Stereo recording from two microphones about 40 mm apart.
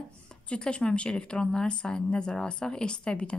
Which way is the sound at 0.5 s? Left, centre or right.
Left.